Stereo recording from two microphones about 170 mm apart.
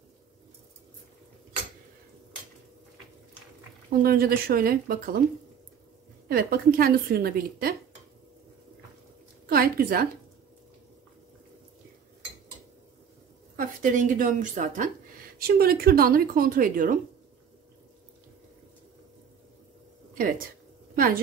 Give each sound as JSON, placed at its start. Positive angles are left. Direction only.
{"t": 4.0, "sound": "a woman's voice", "side_deg": -60}
{"t": 6.2, "sound": "a woman's voice", "side_deg": -60}
{"t": 9.5, "sound": "a woman's voice", "side_deg": -60}
{"t": 13.6, "sound": "a woman's voice", "side_deg": -50}
{"t": 15.4, "sound": "a woman's voice", "side_deg": -65}
{"t": 20.2, "sound": "a woman's voice", "side_deg": -55}